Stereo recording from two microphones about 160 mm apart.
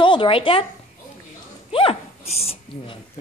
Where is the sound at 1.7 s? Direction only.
35° left (ahead or behind).